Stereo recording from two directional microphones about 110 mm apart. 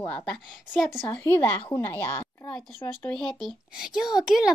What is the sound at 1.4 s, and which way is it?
A woman's voice, 20° left (ahead or behind).